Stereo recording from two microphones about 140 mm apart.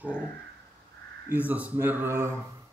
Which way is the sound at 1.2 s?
10° right (ahead or behind).